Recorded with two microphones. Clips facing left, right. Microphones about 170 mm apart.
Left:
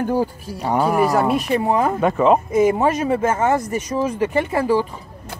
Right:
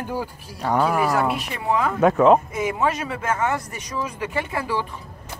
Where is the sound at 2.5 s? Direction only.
45° left (ahead or behind).